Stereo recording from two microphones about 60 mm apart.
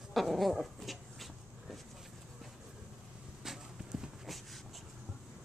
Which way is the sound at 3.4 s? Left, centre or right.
Centre.